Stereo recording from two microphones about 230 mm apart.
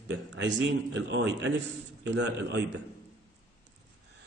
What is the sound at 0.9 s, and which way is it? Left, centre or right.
A man's voice, right.